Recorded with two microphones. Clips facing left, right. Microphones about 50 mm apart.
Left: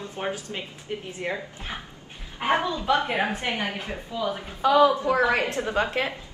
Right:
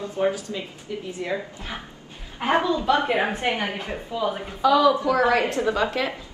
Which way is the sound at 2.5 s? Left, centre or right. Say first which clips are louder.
Right 3 dB; right.